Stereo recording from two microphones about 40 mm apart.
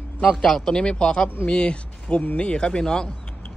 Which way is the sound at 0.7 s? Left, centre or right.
Left.